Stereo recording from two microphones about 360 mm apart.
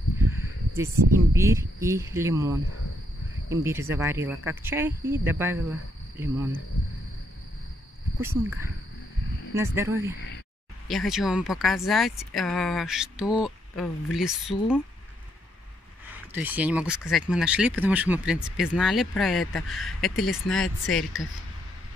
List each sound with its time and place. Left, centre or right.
0.9 s a woman's voice: right
1.3 s speech: centre
8.2 s speech: centre
16.3 s speech: centre